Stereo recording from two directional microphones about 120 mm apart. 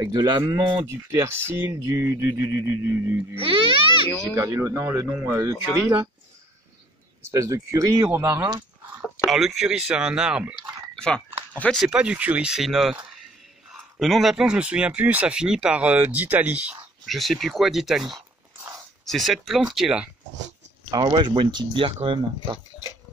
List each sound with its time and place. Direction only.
0.0 s speech: 30° right (ahead or behind)
0.8 s speech: 20° right (ahead or behind)
3.3 s speech: 50° right (ahead or behind)
4.4 s speech: 25° right (ahead or behind)
7.2 s speech: 25° right (ahead or behind)
9.0 s speech: centre (ahead or behind)
11.0 s speech: 5° left (ahead or behind)
11.8 s speech: 10° right (ahead or behind)
17.0 s speech: centre (ahead or behind)
20.9 s speech: 40° right (ahead or behind)